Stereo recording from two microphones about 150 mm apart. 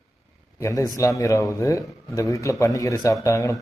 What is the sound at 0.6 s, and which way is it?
A man's voice, 20° left (ahead or behind).